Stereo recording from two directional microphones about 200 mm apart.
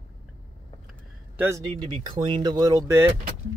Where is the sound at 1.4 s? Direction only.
15° right (ahead or behind).